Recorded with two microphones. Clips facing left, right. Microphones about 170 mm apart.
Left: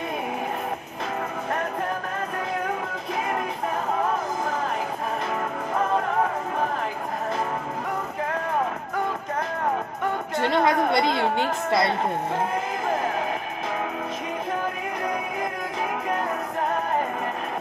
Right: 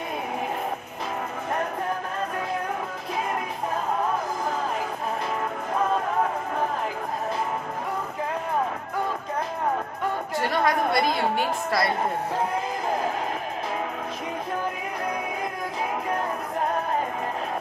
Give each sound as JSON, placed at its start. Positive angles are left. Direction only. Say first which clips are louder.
{"t": 10.5, "sound": "a woman's voice", "louder": "left 2 dB", "side_deg": 25}